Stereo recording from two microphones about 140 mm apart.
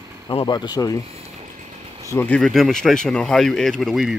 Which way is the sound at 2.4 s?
Centre (ahead or behind).